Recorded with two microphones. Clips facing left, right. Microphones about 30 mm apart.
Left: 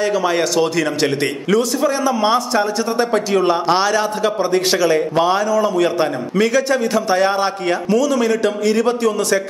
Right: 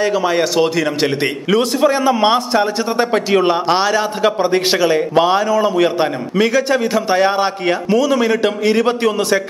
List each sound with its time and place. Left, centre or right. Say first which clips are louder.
0.0 s a man's voice: right 2 dB; centre
1.6 s a man's voice: right 6 dB; right; by 4.0 s centre
4.2 s a man's voice: right 2 dB; right